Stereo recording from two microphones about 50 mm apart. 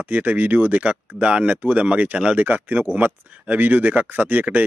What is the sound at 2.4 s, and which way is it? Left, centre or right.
Speech, right.